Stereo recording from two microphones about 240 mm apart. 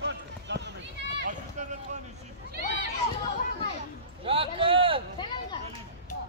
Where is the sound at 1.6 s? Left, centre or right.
Right.